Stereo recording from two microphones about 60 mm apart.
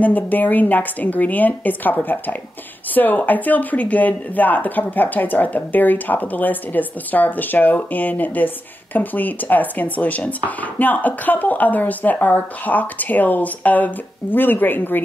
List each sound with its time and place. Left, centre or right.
0.0 s speech: left